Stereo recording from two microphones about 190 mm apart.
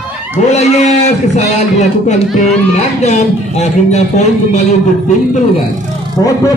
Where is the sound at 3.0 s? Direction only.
35° left (ahead or behind).